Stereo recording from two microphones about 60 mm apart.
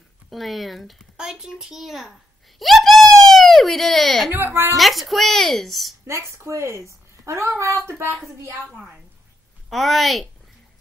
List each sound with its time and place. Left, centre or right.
0.3 s speech: centre
1.1 s a child's voice: centre
4.3 s a woman's voice: right
4.7 s speech: centre
6.0 s a woman's voice: right
8.7 s a child's voice: centre